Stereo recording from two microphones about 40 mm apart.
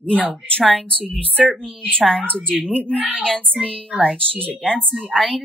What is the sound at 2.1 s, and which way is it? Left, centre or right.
Speech, left.